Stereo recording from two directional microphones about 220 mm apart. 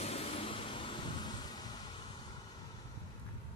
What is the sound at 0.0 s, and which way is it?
Vehicle, 25° left (ahead or behind).